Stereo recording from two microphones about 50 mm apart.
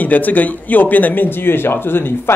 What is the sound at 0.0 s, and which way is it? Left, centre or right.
Speech, left.